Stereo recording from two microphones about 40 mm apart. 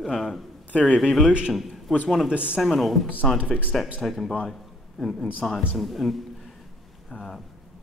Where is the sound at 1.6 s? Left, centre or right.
Centre.